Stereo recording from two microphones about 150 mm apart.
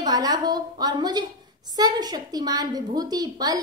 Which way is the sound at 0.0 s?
25° right (ahead or behind).